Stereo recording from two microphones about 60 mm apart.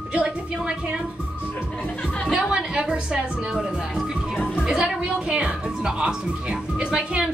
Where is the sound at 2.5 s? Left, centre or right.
Centre.